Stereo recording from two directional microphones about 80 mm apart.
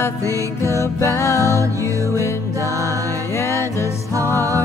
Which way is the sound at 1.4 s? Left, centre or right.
Right.